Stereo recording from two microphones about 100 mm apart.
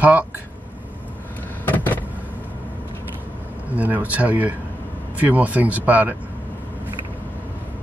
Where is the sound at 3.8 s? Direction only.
15° right (ahead or behind).